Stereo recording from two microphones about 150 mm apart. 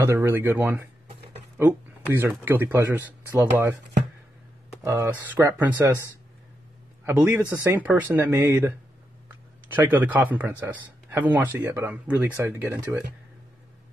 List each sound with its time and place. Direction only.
0.0 s speech: 15° right (ahead or behind)
4.8 s speech: 20° right (ahead or behind)
7.3 s speech: 15° right (ahead or behind)
9.8 s speech: 10° right (ahead or behind)